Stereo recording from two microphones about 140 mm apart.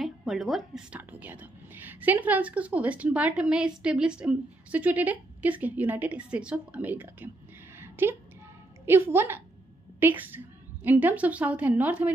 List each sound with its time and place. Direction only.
0.0 s a woman's voice: centre (ahead or behind)
0.9 s a woman's voice: 10° right (ahead or behind)
7.8 s a sound: 15° right (ahead or behind)
8.8 s a woman's voice: 15° right (ahead or behind)